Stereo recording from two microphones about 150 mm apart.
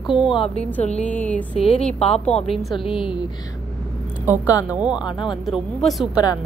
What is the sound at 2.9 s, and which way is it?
Speech, 35° left (ahead or behind).